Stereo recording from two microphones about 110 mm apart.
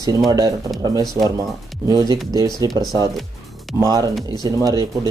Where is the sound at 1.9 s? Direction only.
35° right (ahead or behind).